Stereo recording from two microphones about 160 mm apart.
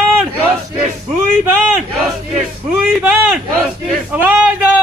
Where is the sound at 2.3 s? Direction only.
Centre (ahead or behind).